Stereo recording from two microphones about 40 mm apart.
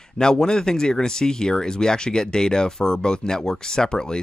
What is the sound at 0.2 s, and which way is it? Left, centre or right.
Speech, centre.